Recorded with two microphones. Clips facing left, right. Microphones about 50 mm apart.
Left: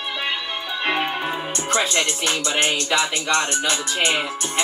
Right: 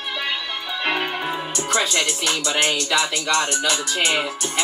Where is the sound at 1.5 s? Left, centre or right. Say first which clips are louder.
Even; left.